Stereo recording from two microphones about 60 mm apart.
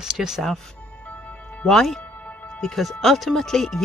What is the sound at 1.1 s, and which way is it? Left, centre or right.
Music, left.